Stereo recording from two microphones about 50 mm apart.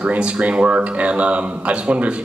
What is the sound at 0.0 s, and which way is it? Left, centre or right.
Speech, right.